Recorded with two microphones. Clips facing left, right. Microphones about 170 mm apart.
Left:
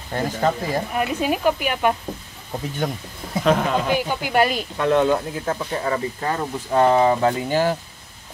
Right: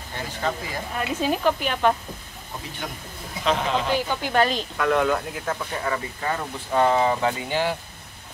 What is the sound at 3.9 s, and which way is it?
Speech, 10° left (ahead or behind).